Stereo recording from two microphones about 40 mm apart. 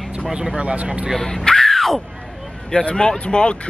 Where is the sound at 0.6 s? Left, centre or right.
Right.